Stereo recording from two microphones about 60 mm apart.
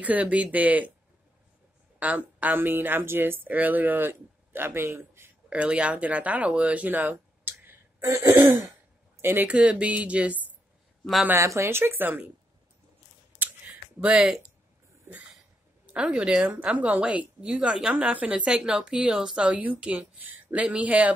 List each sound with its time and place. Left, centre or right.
0.0 s a woman's voice: right
2.0 s speech: right
5.5 s speech: right
8.0 s throat clearing: right
9.1 s speech: right
9.5 s a woman's voice: right
11.3 s speech: right
14.1 s speech: centre
15.9 s a woman's voice: centre